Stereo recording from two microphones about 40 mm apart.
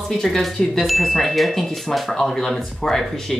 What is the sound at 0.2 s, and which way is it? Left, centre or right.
Speech, centre.